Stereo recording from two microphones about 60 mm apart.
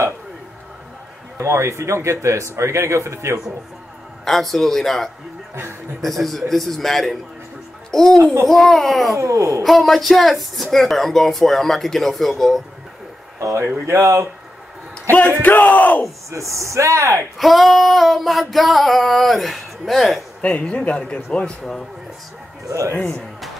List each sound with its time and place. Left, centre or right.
1.4 s speech: right
4.2 s a child's voice: centre
9.1 s a sound: right
9.6 s speech: centre
13.4 s speech: right
13.8 s speech: right
15.0 s crowd: left
16.3 s speech: right
17.4 s speech: centre
20.4 s a man's voice: centre
22.7 s speech: right